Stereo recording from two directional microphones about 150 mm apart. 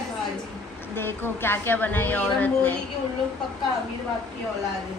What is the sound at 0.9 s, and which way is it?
A woman's voice, 15° left (ahead or behind).